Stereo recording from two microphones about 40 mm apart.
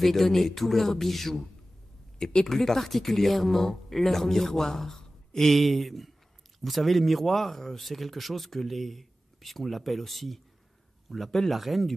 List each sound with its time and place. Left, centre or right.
0.0 s speech: centre
2.1 s speech: centre